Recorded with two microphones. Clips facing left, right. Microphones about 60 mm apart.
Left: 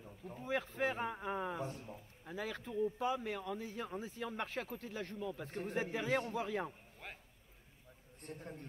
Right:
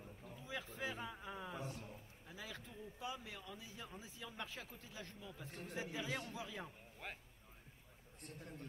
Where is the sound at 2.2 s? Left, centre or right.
Left.